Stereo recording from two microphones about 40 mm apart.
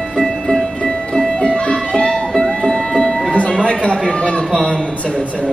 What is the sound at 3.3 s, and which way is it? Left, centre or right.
Music, left.